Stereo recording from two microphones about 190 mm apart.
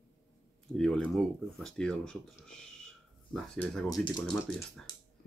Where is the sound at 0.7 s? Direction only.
5° left (ahead or behind).